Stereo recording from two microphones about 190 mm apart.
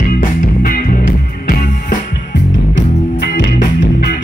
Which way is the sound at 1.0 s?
65° left (ahead or behind).